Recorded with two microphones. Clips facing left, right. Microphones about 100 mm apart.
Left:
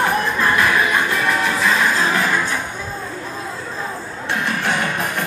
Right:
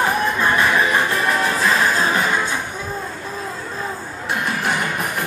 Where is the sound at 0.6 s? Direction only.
25° right (ahead or behind).